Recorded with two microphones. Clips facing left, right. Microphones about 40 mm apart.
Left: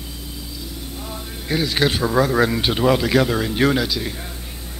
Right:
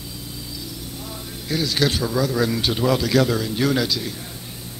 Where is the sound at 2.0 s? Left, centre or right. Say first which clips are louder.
Left 4 dB; left.